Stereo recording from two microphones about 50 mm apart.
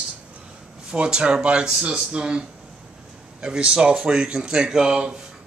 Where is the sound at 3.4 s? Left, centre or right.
Centre.